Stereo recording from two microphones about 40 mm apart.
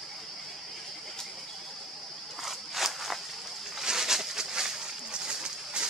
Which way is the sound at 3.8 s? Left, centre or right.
Centre.